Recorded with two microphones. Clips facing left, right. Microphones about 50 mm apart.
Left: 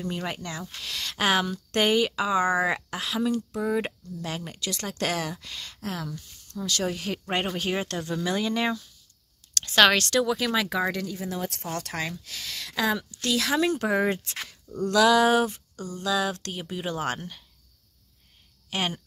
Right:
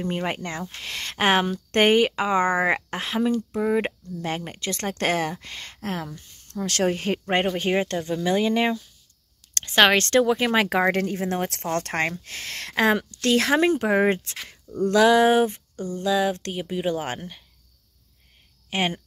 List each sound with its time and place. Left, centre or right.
0.0 s speech: right
6.5 s speech: right
6.9 s speech: right
10.0 s speech: right
13.7 s speech: right
16.0 s speech: centre
18.7 s speech: right